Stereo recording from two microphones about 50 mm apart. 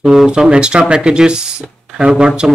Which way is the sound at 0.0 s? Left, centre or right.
Centre.